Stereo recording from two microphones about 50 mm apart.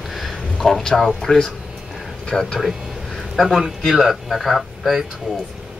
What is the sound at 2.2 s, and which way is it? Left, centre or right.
Speech, centre.